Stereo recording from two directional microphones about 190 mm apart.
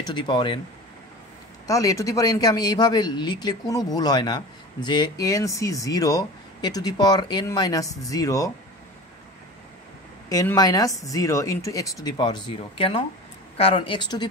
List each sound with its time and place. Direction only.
0.0 s speech: 25° left (ahead or behind)
1.7 s speech: 15° left (ahead or behind)
10.3 s speech: 15° left (ahead or behind)